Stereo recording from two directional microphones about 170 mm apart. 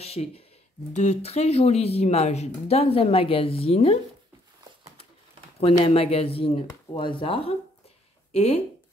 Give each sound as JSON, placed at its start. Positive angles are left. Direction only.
{"t": 0.0, "sound": "speech", "side_deg": 35}
{"t": 5.6, "sound": "speech", "side_deg": 35}